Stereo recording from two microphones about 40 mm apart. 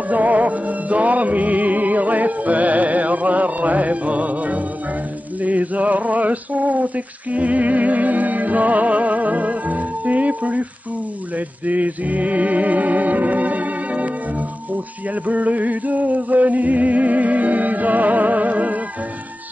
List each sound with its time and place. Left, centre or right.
0.1 s music: right
5.4 s male singing: right
11.3 s music: right
15.2 s music: right